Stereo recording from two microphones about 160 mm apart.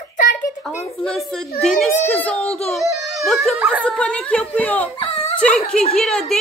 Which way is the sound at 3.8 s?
5° left (ahead or behind).